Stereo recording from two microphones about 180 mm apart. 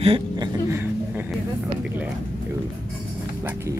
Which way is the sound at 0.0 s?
35° right (ahead or behind).